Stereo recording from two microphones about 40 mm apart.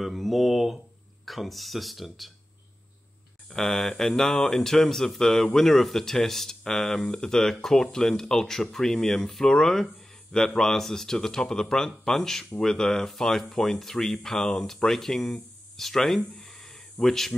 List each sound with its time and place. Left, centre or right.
0.0 s speech: centre
3.4 s speech: centre
16.3 s a sound: centre
17.0 s speech: centre